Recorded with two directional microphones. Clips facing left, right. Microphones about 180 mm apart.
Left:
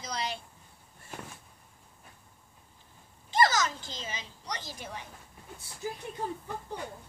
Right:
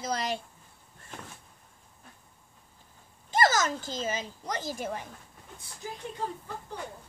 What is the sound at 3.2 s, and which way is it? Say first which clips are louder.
A woman's voice: right 1 dB; 45° right (ahead or behind).